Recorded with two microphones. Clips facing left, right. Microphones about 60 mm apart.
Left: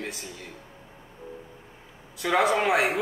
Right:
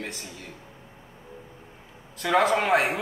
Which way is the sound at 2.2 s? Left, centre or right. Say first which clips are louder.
Right 1 dB; centre.